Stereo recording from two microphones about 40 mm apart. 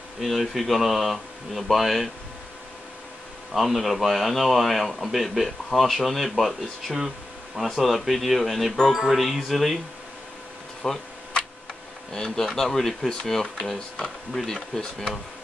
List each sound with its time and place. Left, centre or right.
0.2 s a man's voice: centre
3.5 s a man's voice: centre
8.7 s speech: centre
9.0 s a man's voice: centre
10.8 s a sound: centre
12.1 s speech: centre